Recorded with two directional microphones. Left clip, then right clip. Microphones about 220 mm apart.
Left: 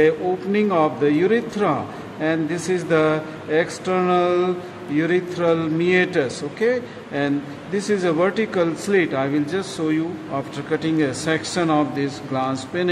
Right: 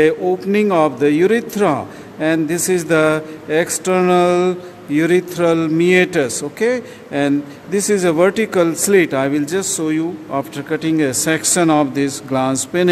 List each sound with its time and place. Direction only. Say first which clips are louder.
0.0 s speech: right 4 dB; 50° right (ahead or behind)